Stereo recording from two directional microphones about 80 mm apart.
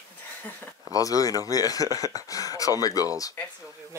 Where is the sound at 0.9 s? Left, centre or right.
Left.